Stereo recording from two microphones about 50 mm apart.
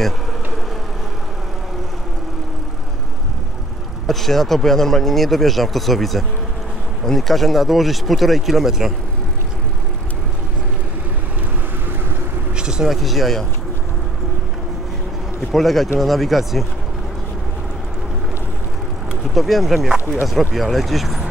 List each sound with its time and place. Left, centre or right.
4.1 s speech: centre
12.5 s vehicle: centre
12.9 s speech: centre
15.5 s speech: centre
19.3 s speech: centre